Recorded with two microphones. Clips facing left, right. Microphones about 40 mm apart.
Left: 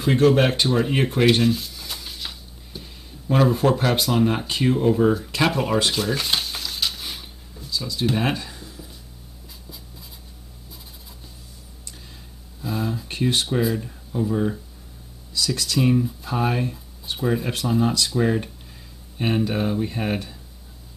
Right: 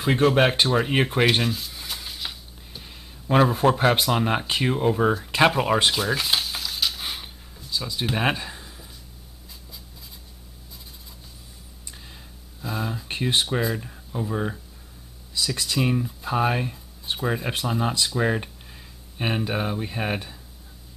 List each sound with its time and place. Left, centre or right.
0.0 s speech: centre
1.4 s speech: centre
1.9 s music: centre
3.4 s speech: centre
5.9 s dishes: centre
7.0 s a sound: centre
7.7 s speech: right
12.6 s a sound: centre
13.6 s speech: centre